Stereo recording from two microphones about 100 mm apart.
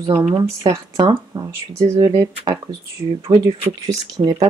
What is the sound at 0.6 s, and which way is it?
Speech, 45° right (ahead or behind).